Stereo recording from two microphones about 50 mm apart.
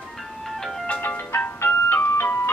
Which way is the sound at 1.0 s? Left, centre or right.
Left.